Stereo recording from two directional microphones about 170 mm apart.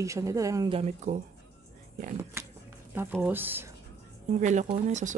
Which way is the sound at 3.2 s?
10° right (ahead or behind).